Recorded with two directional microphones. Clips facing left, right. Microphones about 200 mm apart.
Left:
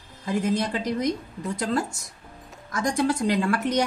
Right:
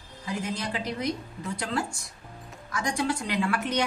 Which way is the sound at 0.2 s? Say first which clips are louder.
Left 7 dB; 50° left (ahead or behind).